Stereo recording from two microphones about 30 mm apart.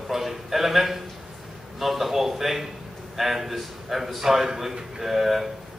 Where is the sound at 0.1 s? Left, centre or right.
Centre.